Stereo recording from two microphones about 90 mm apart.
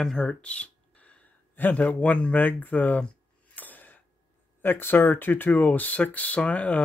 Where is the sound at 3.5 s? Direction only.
20° left (ahead or behind).